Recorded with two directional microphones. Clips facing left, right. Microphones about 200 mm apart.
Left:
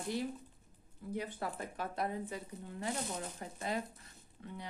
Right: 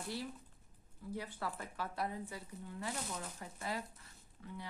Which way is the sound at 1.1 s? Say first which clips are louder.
Left 3 dB; 20° left (ahead or behind).